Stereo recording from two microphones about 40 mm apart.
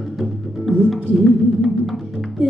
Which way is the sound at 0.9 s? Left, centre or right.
Centre.